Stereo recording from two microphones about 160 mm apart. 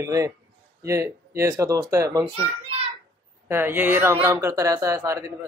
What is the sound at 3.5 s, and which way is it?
Speech, 15° right (ahead or behind).